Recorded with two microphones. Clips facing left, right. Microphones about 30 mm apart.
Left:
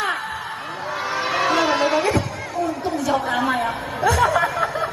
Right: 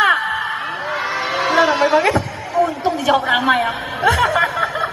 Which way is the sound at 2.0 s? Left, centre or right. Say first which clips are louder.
Right 4 dB; right.